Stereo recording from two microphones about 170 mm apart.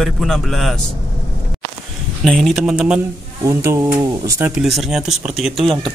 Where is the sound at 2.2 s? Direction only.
Centre (ahead or behind).